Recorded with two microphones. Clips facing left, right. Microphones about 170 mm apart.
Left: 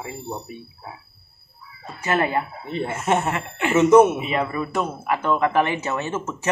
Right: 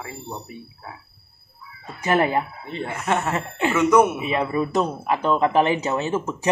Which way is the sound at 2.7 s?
20° left (ahead or behind).